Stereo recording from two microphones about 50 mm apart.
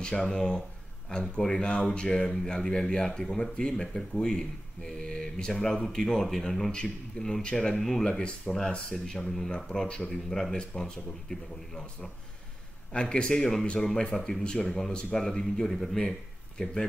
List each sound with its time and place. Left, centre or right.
0.0 s speech: centre
9.7 s speech: centre
10.1 s speech: centre
12.9 s speech: centre